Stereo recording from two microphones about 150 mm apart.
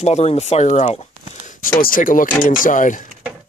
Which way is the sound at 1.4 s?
55° left (ahead or behind).